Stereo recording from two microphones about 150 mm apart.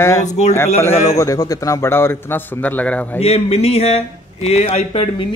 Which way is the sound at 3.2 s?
45° left (ahead or behind).